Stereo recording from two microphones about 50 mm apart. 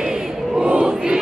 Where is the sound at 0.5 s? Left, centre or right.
Centre.